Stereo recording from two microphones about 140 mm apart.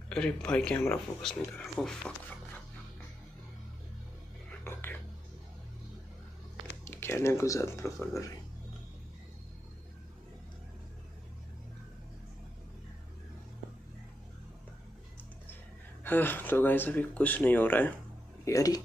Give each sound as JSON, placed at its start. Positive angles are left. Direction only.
{"t": 0.1, "sound": "speech", "side_deg": 5}
{"t": 4.5, "sound": "whispering", "side_deg": 15}
{"t": 6.8, "sound": "speech", "side_deg": 15}
{"t": 16.0, "sound": "speech", "side_deg": 15}
{"t": 18.4, "sound": "speech", "side_deg": 25}